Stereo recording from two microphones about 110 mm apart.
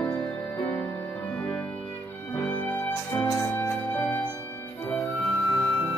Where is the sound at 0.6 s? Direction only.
15° left (ahead or behind).